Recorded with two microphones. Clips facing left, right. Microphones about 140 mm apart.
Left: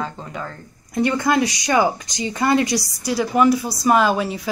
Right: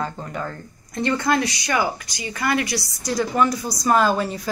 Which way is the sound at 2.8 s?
10° left (ahead or behind).